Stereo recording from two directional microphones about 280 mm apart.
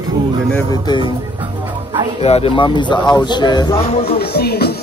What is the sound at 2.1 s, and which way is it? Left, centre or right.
Speech, left.